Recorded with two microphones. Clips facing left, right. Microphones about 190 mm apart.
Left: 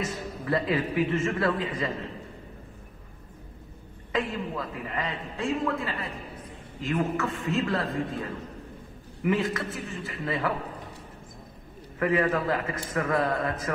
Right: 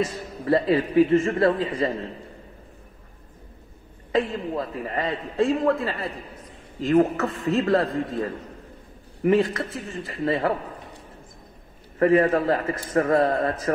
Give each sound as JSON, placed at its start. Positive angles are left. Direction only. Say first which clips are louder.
{"t": 0.0, "sound": "a man's voice", "louder": "right 5 dB", "side_deg": -35}
{"t": 4.1, "sound": "a man's voice", "louder": "right 5 dB", "side_deg": -35}
{"t": 9.2, "sound": "a man's voice", "louder": "right 6 dB", "side_deg": -35}
{"t": 12.0, "sound": "a man's voice", "louder": "right 6 dB", "side_deg": -40}